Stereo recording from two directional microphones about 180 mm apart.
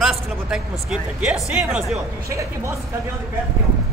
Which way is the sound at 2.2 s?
15° right (ahead or behind).